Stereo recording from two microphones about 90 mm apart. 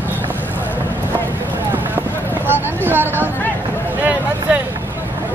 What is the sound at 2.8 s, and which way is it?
Chatter, 25° right (ahead or behind).